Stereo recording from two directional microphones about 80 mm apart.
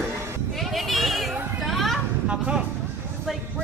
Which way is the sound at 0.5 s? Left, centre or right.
Centre.